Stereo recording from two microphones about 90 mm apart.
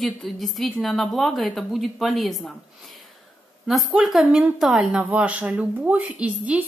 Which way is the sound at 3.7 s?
Centre (ahead or behind).